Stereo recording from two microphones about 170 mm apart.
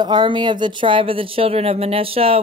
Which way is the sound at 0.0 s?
25° right (ahead or behind).